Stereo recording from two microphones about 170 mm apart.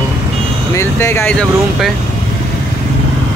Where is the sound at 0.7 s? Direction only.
15° left (ahead or behind).